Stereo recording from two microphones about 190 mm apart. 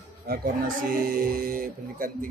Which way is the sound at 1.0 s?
50° right (ahead or behind).